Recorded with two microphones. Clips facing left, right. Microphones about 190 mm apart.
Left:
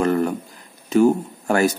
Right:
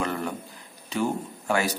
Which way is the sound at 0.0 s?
45° left (ahead or behind).